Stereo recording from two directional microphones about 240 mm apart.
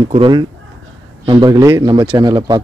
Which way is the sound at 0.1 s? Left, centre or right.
Centre.